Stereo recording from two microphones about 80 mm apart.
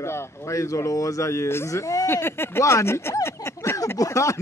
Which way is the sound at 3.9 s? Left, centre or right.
Left.